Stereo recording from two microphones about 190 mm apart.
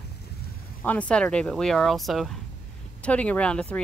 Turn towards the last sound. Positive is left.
turn(degrees=5)  # may be behind; listen again after turning